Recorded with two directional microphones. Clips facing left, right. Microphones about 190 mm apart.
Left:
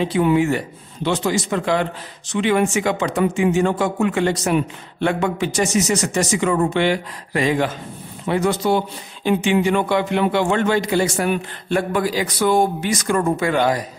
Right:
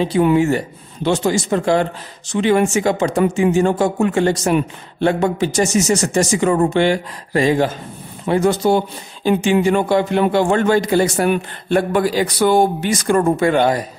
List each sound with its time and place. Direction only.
0.0 s a man's voice: 40° right (ahead or behind)
1.1 s speech: 30° right (ahead or behind)
1.6 s a man's voice: 40° right (ahead or behind)